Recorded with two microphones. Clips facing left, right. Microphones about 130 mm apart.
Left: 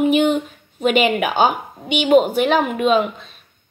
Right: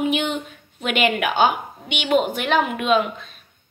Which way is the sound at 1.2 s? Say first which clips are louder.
Left 2 dB; 45° left (ahead or behind).